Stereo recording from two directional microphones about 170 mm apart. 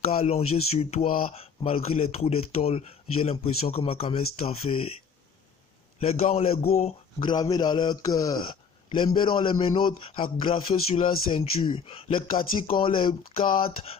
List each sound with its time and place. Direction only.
0.2 s a man's voice: 35° left (ahead or behind)
5.9 s a man's voice: 35° left (ahead or behind)
7.2 s a man's voice: 25° left (ahead or behind)